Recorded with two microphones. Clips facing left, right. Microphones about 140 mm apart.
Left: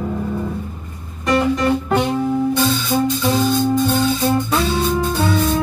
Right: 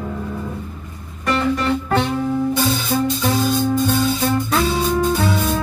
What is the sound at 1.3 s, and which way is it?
Music, 15° left (ahead or behind).